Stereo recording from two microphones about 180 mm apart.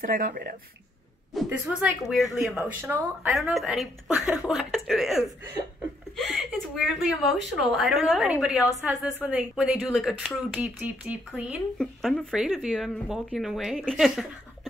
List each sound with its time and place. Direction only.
0.0 s speech: 50° right (ahead or behind)
1.3 s speech: centre (ahead or behind)
2.5 s speech: 10° right (ahead or behind)
3.3 s speech: centre (ahead or behind)
6.1 s a sound: centre (ahead or behind)
7.5 s speech: centre (ahead or behind)